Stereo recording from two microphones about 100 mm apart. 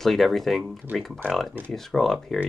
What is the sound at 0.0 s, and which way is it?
Speech, centre (ahead or behind).